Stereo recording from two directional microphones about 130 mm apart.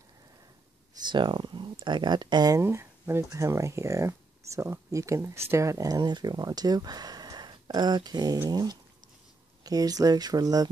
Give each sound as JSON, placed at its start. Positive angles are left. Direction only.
{"t": 1.0, "sound": "speech", "side_deg": -35}